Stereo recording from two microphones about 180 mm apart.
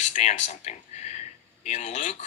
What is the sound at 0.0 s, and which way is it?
A man's voice, 40° left (ahead or behind).